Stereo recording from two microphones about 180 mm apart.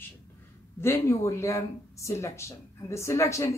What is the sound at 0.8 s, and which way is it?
Speech, 15° left (ahead or behind).